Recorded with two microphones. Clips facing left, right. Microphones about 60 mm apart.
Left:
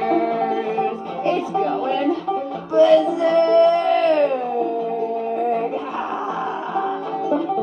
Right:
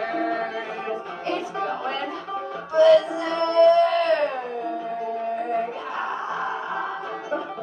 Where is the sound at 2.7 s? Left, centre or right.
Left.